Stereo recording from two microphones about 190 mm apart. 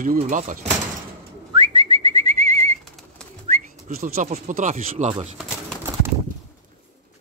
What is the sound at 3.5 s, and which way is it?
Bird, 40° right (ahead or behind).